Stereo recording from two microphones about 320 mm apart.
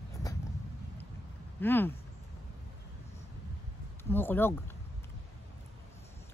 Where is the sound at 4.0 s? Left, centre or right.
Centre.